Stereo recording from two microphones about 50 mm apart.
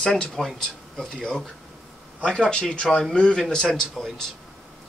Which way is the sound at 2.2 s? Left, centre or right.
Centre.